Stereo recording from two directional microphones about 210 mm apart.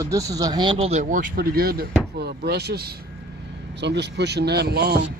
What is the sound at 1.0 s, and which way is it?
Speech, 40° right (ahead or behind).